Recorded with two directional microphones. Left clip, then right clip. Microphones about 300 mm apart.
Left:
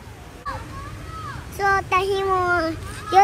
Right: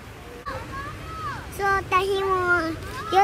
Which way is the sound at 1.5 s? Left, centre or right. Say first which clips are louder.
Left 3 dB; centre.